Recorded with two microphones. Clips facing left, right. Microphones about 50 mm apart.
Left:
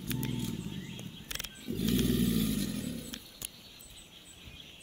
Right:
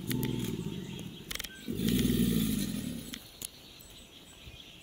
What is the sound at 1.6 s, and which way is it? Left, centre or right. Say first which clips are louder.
Wild animals: right 1 dB; centre.